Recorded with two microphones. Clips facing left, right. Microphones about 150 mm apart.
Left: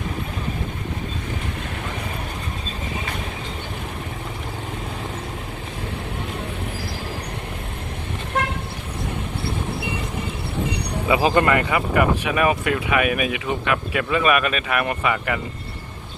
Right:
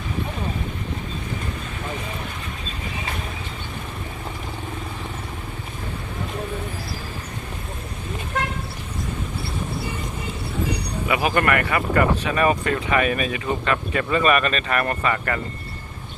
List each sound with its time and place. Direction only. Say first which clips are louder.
11.1 s speech: left 3 dB; 25° left (ahead or behind); by 15.4 s 10° left (ahead or behind)